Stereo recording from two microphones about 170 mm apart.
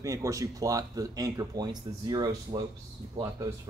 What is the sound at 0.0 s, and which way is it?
Speech, 20° right (ahead or behind).